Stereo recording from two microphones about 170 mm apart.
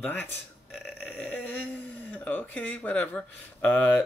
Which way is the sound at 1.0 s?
10° left (ahead or behind).